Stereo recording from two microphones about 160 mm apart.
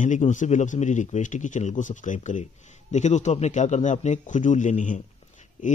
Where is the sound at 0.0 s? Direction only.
50° left (ahead or behind).